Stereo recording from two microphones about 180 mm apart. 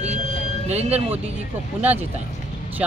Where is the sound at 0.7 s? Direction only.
35° right (ahead or behind).